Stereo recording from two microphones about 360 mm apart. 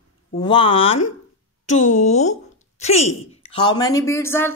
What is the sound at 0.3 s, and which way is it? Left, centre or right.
A woman's voice, centre.